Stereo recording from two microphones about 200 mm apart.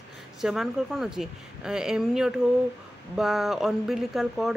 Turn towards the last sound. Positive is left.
turn(degrees=0)  # may be behind; listen again after turning